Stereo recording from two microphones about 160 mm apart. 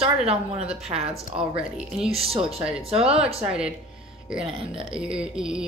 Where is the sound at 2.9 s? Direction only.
35° right (ahead or behind).